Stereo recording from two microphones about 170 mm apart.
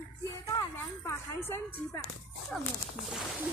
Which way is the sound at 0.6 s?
15° left (ahead or behind).